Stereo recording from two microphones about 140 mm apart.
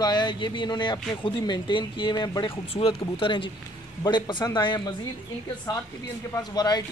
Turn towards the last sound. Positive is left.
turn(degrees=30)  # may be behind; listen again after turning